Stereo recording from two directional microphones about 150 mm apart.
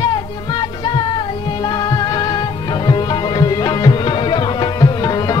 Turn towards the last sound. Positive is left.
turn(degrees=30)  # may be behind; listen again after turning